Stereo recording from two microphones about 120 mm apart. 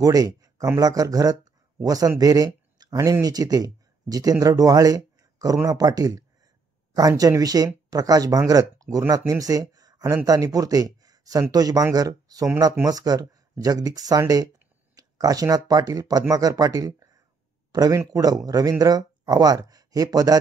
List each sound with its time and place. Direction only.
0.0 s speech: 30° right (ahead or behind)